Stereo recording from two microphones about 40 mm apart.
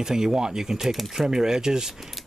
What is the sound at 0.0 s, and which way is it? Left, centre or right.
Speech, centre.